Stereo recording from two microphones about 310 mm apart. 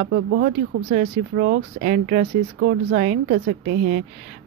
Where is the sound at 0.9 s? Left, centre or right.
Right.